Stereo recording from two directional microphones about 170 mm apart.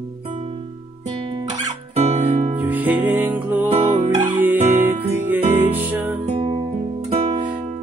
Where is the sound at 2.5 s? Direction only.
10° right (ahead or behind).